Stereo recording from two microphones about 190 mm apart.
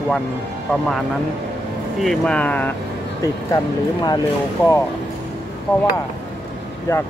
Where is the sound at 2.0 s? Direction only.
5° left (ahead or behind).